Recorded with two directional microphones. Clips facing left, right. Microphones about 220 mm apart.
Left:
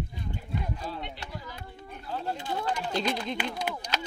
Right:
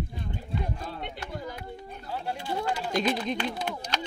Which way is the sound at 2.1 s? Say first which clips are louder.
Even; 10° right (ahead or behind).